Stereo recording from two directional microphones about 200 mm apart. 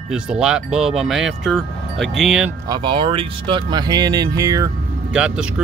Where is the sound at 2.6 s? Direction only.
20° right (ahead or behind).